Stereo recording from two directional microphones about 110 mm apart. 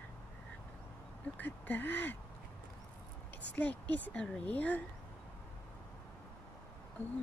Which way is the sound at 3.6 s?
15° left (ahead or behind).